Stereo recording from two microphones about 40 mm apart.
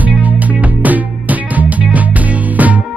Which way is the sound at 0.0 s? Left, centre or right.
Right.